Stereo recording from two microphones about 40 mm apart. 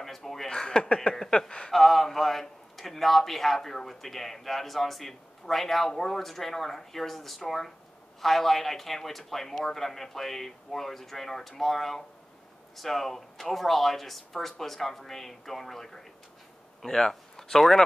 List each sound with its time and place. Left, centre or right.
0.0 s speech: centre
0.5 s a man's voice: centre